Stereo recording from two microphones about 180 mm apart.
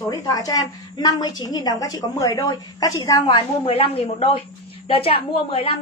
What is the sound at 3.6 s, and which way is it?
A man's voice, 30° left (ahead or behind).